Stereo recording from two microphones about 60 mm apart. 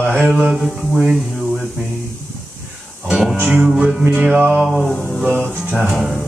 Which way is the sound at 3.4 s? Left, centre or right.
Centre.